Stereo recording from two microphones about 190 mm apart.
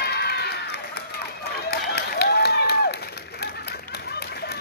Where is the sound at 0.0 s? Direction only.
60° left (ahead or behind).